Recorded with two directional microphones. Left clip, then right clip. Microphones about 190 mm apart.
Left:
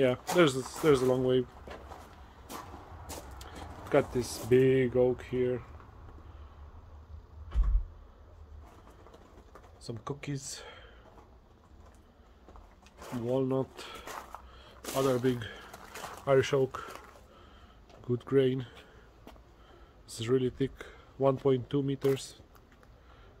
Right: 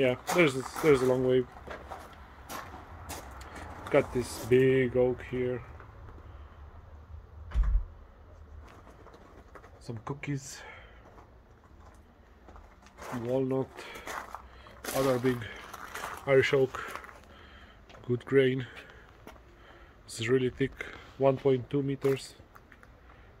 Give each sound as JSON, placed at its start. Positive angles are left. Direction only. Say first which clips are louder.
{"t": 0.4, "sound": "speech", "louder": "left 1 dB", "side_deg": 15}
{"t": 3.9, "sound": "speech", "louder": "right 1 dB", "side_deg": 15}
{"t": 9.8, "sound": "speech", "louder": "right 1 dB", "side_deg": 10}
{"t": 13.3, "sound": "a sound", "louder": "even", "side_deg": 15}
{"t": 16.3, "sound": "speech", "louder": "right 2 dB", "side_deg": 15}
{"t": 18.0, "sound": "speech", "louder": "right 2 dB", "side_deg": 10}
{"t": 20.2, "sound": "speech", "louder": "right 2 dB", "side_deg": 15}